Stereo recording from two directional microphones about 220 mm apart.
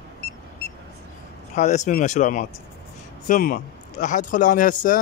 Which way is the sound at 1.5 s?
30° left (ahead or behind).